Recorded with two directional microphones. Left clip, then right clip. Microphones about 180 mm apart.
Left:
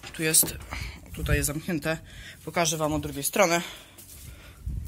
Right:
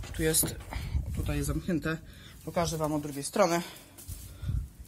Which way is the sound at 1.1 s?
Centre (ahead or behind).